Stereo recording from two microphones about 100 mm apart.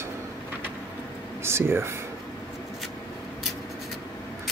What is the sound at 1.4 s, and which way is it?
Speech, 25° right (ahead or behind).